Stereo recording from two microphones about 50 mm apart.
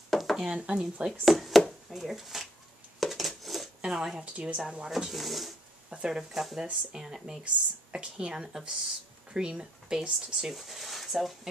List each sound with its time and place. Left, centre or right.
0.1 s a sound: centre
0.4 s speech: centre
0.7 s speech: right
1.2 s speech: centre
3.0 s a sound: centre
3.8 s speech: centre
4.2 s speech: right
4.8 s speech: centre
5.9 s speech: centre
6.3 s speech: centre
6.6 s speech: centre
8.5 s speech: centre
9.3 s speech: centre
10.1 s speech: centre